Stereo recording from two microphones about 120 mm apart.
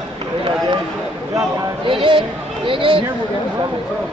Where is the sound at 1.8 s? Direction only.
45° right (ahead or behind).